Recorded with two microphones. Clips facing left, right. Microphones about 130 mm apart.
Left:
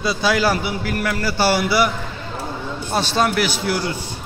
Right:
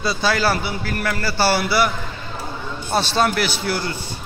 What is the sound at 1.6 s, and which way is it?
Speech, 5° left (ahead or behind).